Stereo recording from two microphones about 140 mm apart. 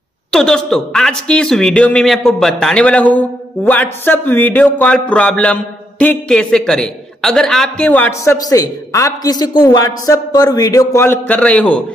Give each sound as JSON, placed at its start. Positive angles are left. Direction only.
{"t": 0.3, "sound": "speech", "side_deg": 5}
{"t": 8.2, "sound": "a man's voice", "side_deg": 25}